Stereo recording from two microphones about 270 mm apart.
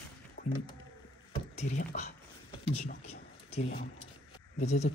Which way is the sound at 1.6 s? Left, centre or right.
Left.